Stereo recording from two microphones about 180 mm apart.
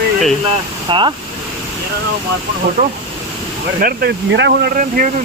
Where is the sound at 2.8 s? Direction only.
50° right (ahead or behind).